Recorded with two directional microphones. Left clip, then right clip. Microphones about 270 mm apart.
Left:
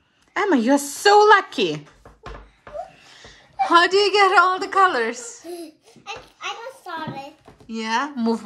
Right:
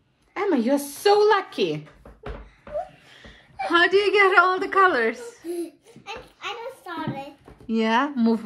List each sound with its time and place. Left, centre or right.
0.3 s speech: left
3.2 s a sound: centre
7.7 s speech: centre